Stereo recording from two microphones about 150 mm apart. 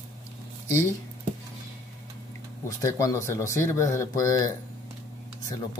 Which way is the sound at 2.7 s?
20° left (ahead or behind).